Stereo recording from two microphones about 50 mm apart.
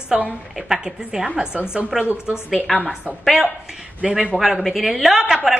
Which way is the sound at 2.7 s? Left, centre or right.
Centre.